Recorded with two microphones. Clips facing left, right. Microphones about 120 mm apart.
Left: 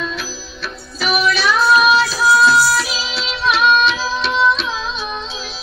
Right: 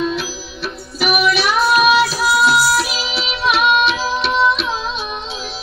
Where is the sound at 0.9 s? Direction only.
15° right (ahead or behind).